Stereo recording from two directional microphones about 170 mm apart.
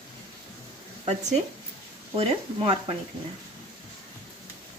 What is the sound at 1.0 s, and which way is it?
Speech, 40° right (ahead or behind).